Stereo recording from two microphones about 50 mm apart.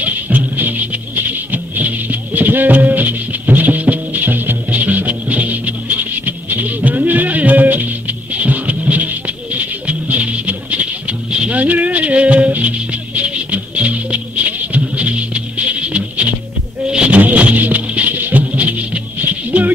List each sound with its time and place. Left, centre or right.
0.0 s music: right
19.2 s bird: right